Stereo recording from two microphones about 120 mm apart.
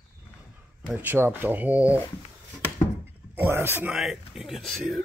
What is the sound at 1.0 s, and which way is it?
Speech, 15° right (ahead or behind).